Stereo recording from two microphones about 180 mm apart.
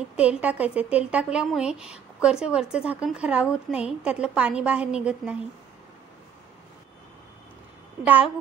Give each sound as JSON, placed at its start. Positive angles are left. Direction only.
{"t": 0.1, "sound": "speech", "side_deg": -5}
{"t": 8.0, "sound": "a child's voice", "side_deg": -10}